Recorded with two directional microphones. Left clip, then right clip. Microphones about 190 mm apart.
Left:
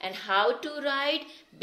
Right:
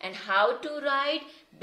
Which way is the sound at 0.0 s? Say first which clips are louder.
Right 1 dB; 35° left (ahead or behind).